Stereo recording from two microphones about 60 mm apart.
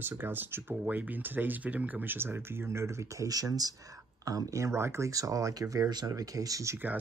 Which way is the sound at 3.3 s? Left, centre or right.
Right.